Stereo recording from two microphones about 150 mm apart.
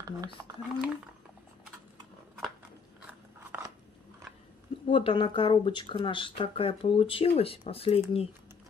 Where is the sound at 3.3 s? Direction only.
15° right (ahead or behind).